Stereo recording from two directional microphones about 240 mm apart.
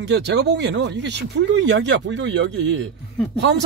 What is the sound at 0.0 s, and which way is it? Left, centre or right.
Speech, right.